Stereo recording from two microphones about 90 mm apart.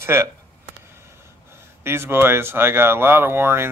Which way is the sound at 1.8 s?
25° right (ahead or behind).